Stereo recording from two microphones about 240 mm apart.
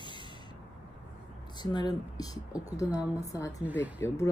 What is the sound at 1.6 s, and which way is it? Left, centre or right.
A woman's voice, centre.